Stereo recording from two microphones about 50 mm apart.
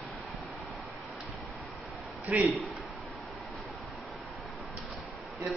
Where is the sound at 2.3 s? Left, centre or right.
Right.